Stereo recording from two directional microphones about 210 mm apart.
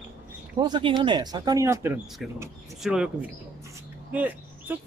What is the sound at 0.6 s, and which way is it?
Speech, 20° right (ahead or behind).